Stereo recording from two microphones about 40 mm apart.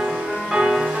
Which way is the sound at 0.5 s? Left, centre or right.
Centre.